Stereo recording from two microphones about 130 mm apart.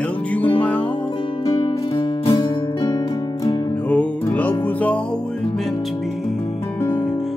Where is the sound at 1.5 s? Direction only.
40° left (ahead or behind).